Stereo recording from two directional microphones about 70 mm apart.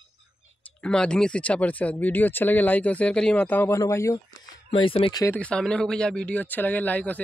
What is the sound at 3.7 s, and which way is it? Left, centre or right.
Speech, left.